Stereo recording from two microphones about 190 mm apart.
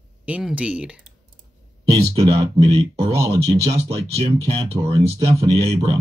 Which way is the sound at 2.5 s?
30° right (ahead or behind).